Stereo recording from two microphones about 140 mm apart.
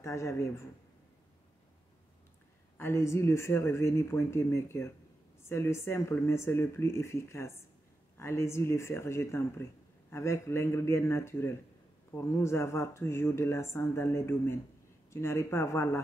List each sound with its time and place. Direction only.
0.0 s speech: 20° left (ahead or behind)
2.8 s speech: 20° left (ahead or behind)